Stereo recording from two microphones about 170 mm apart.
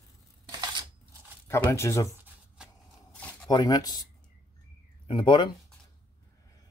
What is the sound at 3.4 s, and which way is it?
Speech, 20° left (ahead or behind).